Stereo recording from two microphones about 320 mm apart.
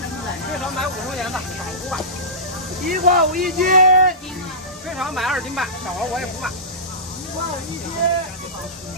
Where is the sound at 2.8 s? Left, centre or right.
Right.